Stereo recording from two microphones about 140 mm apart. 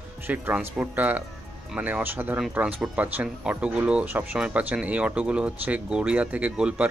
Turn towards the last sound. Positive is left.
turn(degrees=-10)  # may be behind; listen again after turning